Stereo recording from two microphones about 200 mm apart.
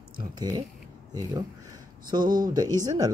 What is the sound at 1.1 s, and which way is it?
Speech, 15° right (ahead or behind).